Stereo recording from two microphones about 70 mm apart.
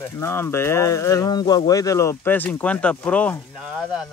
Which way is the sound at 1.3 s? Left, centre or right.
Left.